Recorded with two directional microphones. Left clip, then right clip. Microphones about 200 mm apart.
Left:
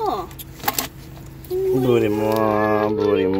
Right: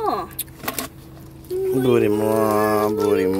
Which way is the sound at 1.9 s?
15° right (ahead or behind).